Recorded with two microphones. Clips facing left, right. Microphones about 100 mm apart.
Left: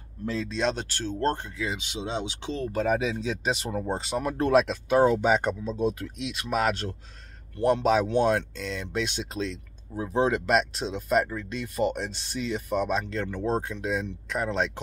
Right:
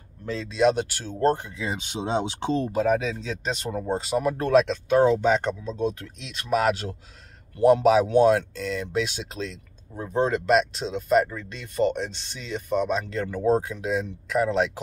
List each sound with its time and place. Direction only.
0.2 s speech: centre (ahead or behind)
1.7 s speech: 45° right (ahead or behind)
2.7 s speech: centre (ahead or behind)